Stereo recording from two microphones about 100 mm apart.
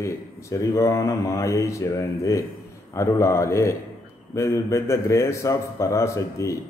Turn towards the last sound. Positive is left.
turn(degrees=30)  # may be behind; listen again after turning